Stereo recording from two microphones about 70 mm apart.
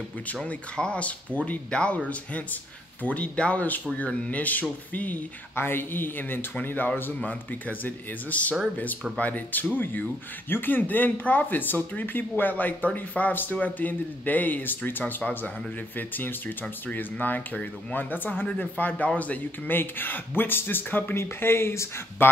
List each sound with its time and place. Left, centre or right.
0.4 s speech: centre; by 22.3 s left